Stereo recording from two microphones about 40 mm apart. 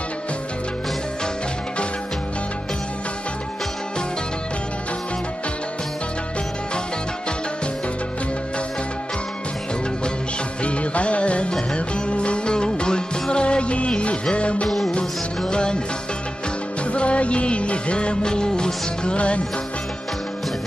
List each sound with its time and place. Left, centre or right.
10.6 s music: left
14.7 s music: centre
15.0 s music: left
16.9 s music: left